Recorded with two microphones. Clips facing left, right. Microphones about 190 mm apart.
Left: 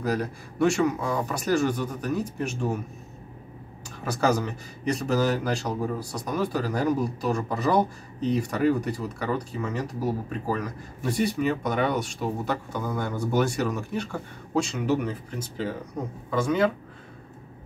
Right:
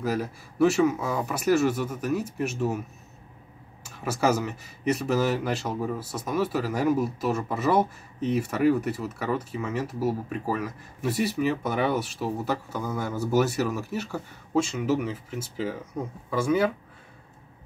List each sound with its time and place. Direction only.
0.0 s a man's voice: 5° right (ahead or behind)
4.0 s a man's voice: 5° right (ahead or behind)